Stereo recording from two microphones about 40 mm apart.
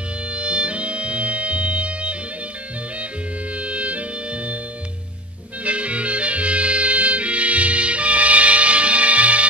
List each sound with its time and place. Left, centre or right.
0.3 s music: right
3.5 s music: right
5.6 s music: right